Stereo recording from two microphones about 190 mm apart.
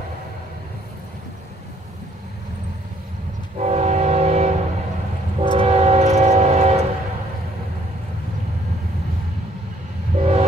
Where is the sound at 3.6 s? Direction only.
35° right (ahead or behind).